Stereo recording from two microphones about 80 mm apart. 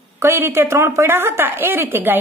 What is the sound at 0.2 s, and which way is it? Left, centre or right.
A woman's voice, right.